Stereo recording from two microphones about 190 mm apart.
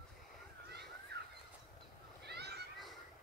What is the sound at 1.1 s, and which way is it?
Horse, 60° right (ahead or behind).